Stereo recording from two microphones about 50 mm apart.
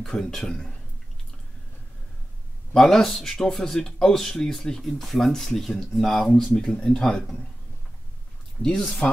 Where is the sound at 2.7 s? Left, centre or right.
Centre.